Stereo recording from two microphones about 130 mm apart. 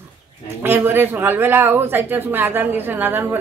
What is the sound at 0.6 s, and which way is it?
A woman's voice, 20° right (ahead or behind).